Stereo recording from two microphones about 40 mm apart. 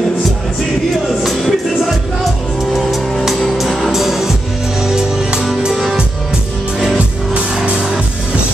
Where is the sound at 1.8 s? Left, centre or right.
Centre.